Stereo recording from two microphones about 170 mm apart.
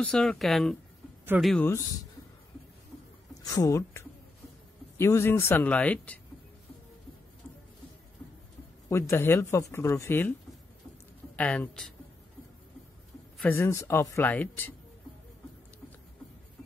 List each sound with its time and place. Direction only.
0.0 s speech: 5° left (ahead or behind)
3.4 s speech: 20° left (ahead or behind)
8.8 s speech: 15° left (ahead or behind)
11.3 s speech: 10° left (ahead or behind)
13.5 s speech: 15° left (ahead or behind)